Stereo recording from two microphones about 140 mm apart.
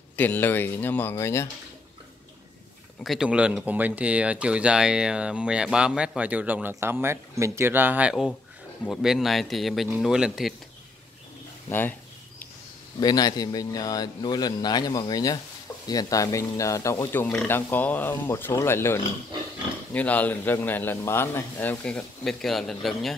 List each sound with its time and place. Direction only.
0.1 s a man's voice: 15° left (ahead or behind)
3.0 s speech: centre (ahead or behind)
13.0 s a man's voice: 30° left (ahead or behind); by 23.1 s centre (ahead or behind)